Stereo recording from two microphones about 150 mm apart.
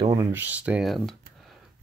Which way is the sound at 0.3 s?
10° right (ahead or behind).